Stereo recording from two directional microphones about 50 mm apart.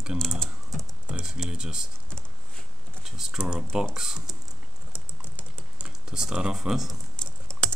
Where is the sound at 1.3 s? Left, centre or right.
Centre.